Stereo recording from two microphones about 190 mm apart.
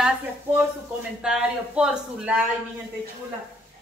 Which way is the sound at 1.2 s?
5° right (ahead or behind).